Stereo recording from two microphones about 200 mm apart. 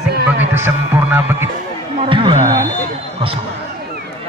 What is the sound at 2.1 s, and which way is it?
Speech, 25° right (ahead or behind).